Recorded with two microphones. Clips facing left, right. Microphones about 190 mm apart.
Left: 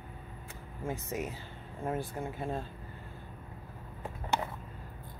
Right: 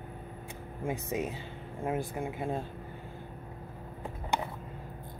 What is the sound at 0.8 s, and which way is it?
Speech, 15° right (ahead or behind).